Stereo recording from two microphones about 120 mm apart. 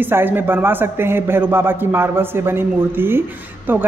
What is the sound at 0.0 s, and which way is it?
A woman's voice, 15° right (ahead or behind).